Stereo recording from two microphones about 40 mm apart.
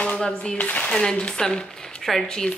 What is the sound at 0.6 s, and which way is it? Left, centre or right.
Speech, left.